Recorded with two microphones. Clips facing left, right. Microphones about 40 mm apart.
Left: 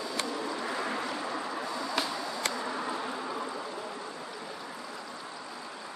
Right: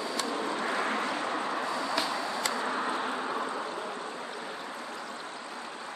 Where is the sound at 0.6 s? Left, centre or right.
Right.